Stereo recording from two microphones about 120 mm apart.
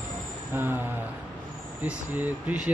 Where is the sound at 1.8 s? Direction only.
15° right (ahead or behind).